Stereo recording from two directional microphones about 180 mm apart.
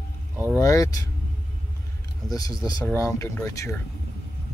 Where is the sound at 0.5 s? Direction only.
20° left (ahead or behind).